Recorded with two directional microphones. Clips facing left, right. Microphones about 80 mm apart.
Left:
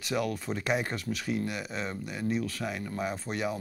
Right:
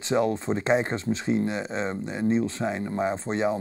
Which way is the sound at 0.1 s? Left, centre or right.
Right.